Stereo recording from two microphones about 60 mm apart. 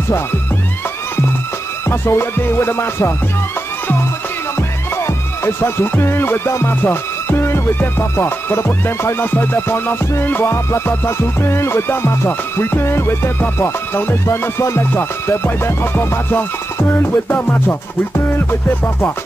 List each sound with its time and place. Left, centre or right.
1.9 s music: left
4.6 s music: left
14.2 s music: left